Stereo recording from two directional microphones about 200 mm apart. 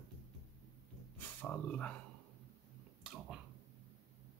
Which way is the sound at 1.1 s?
10° left (ahead or behind).